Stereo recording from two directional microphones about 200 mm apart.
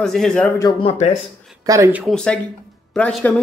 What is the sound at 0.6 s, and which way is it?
Speech, 20° left (ahead or behind).